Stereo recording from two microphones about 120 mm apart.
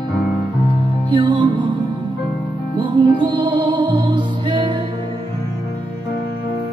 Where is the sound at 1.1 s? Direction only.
40° right (ahead or behind).